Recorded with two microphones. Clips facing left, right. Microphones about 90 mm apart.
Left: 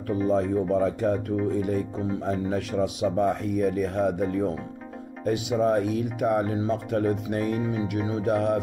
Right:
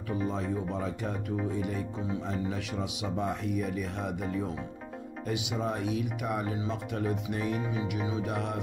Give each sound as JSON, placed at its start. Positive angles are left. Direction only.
{"t": 0.3, "sound": "speech", "side_deg": 40}